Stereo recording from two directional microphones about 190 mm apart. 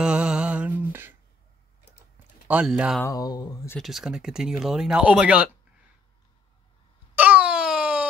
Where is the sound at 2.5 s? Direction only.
5° right (ahead or behind).